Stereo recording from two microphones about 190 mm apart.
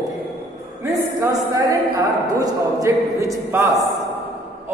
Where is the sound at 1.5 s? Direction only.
15° right (ahead or behind).